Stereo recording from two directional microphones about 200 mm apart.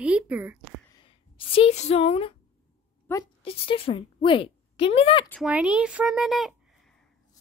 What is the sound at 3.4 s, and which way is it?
A woman's voice, 30° left (ahead or behind).